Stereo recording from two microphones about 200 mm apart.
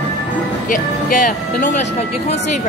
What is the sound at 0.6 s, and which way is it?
Speech, 40° left (ahead or behind).